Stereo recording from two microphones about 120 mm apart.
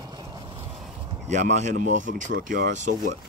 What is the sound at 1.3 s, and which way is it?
Speech, 85° right.